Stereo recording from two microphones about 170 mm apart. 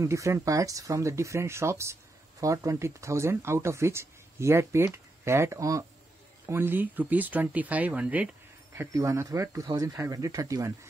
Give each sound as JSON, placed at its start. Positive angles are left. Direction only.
{"t": 0.0, "sound": "speech", "side_deg": -15}